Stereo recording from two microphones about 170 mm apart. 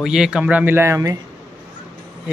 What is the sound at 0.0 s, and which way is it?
Speech, centre (ahead or behind).